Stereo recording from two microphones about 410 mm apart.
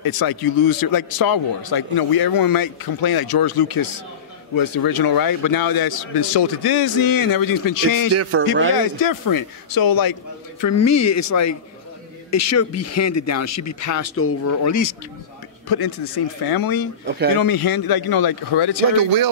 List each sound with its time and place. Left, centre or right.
0.0 s a man's voice: left
8.1 s a man's voice: right
9.0 s a man's voice: left
10.6 s speech: left
15.7 s a man's voice: left
17.0 s speech: right
17.4 s a man's voice: left
18.9 s speech: right